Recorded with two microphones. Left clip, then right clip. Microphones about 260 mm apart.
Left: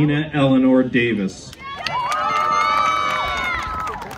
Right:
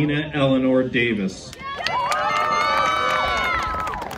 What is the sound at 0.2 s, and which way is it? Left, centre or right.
Speech, left.